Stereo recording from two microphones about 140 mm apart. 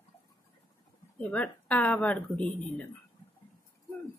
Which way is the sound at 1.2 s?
10° left (ahead or behind).